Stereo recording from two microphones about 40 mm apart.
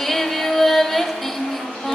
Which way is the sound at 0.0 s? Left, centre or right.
Centre.